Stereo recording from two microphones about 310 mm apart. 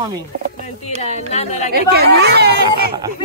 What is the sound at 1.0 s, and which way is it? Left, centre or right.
Speech, left.